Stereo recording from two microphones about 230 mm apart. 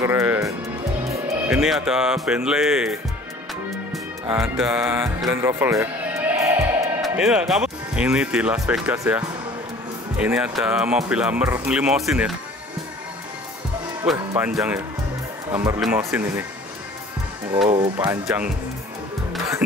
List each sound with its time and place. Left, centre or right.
0.0 s music: centre
1.5 s speech: centre
14.1 s speech: centre
17.7 s speech: centre
18.0 s speech: centre